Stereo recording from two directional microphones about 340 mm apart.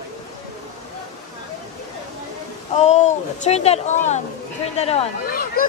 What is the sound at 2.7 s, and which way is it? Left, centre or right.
Speech, centre.